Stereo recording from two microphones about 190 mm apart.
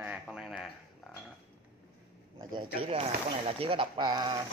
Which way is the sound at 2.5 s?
25° right (ahead or behind).